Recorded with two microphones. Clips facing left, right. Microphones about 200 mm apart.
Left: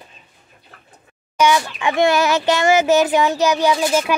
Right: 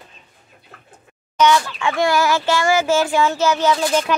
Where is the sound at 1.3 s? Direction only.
10° left (ahead or behind).